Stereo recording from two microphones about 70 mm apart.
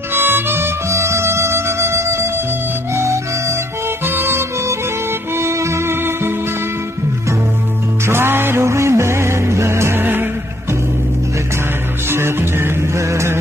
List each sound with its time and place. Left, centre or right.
0.1 s music: right
4.0 s music: right
8.1 s music: right
12.1 s music: right